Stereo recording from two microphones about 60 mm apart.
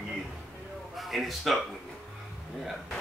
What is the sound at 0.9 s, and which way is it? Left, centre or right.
Speech, centre.